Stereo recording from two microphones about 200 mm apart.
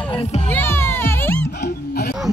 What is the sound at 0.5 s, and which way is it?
Music, 10° left (ahead or behind).